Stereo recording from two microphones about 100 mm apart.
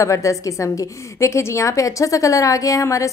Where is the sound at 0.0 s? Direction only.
30° left (ahead or behind).